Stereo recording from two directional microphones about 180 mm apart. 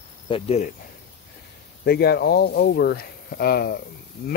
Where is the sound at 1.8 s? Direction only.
65° left (ahead or behind).